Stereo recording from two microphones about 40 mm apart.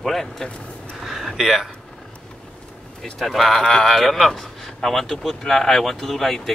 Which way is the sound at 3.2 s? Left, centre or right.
Centre.